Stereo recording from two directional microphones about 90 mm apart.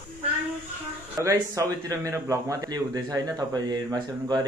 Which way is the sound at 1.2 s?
35° right (ahead or behind).